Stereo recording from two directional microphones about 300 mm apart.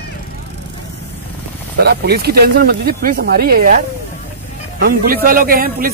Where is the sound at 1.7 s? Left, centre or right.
Right.